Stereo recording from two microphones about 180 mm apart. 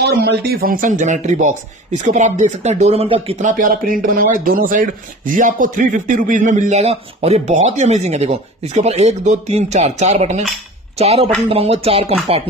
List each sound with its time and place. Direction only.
0.0 s speech: 65° right (ahead or behind); by 12.4 s 30° right (ahead or behind)